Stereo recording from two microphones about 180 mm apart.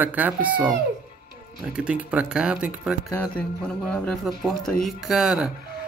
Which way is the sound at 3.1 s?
10° left (ahead or behind).